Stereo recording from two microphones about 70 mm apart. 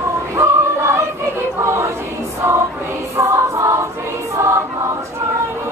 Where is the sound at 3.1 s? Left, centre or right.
Right.